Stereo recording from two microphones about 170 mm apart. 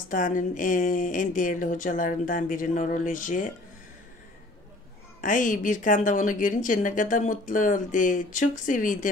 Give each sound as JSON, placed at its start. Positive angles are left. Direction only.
{"t": 0.1, "sound": "a woman's voice", "side_deg": 50}
{"t": 5.2, "sound": "a woman's voice", "side_deg": 50}